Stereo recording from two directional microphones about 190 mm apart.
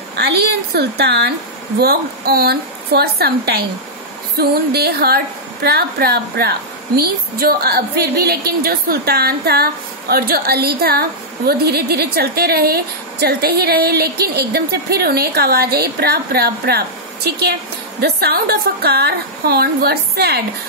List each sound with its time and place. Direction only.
0.1 s a woman's voice: 60° right (ahead or behind)